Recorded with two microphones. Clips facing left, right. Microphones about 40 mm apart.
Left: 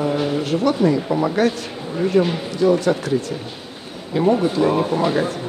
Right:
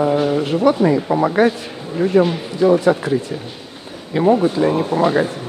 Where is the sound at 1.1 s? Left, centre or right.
Right.